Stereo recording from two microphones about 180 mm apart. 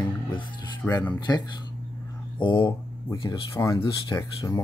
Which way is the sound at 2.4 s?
25° left (ahead or behind).